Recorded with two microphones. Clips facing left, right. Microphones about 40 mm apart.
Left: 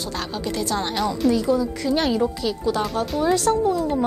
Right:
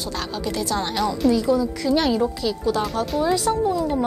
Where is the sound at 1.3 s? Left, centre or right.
Left.